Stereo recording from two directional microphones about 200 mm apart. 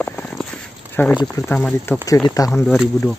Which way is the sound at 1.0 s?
10° left (ahead or behind).